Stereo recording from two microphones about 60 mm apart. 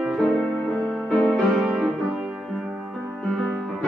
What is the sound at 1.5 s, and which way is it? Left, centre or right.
Music, centre.